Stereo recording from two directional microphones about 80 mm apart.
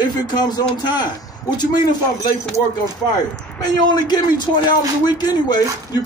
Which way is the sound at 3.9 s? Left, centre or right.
Left.